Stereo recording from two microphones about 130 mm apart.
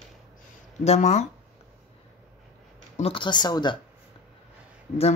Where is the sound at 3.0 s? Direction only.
40° left (ahead or behind).